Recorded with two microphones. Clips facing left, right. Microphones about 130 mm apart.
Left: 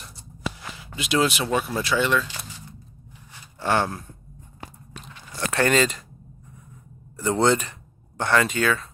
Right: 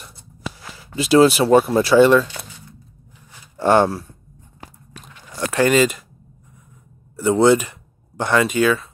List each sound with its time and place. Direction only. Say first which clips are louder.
0.9 s speech: right 10 dB; 35° right (ahead or behind)
3.5 s speech: right 8 dB; 40° right (ahead or behind)
5.5 s speech: right 5 dB; 10° right (ahead or behind)
7.2 s speech: right 6 dB; 10° right (ahead or behind)